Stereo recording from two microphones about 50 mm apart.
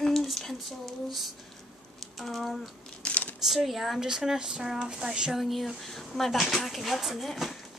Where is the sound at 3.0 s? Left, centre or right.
Left.